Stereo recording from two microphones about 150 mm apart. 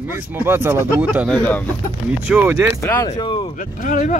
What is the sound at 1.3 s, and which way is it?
Speech, 10° left (ahead or behind).